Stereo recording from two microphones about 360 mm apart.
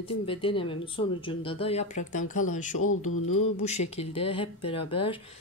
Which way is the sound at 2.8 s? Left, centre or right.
Left.